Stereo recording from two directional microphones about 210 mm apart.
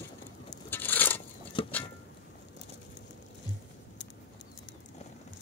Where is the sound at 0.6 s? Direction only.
10° left (ahead or behind).